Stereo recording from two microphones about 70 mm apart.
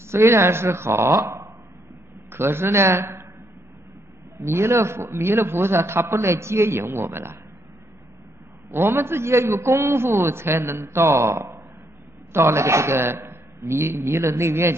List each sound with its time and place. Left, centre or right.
0.1 s a man's voice: right
1.1 s a sound: right
2.3 s a man's voice: right
4.4 s a man's voice: right
8.6 s a man's voice: right